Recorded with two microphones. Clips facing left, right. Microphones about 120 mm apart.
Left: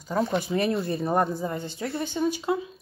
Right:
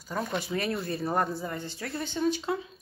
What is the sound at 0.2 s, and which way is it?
Speech, 20° left (ahead or behind).